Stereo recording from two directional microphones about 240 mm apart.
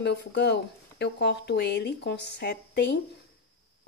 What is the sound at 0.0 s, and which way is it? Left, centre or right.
Speech, left.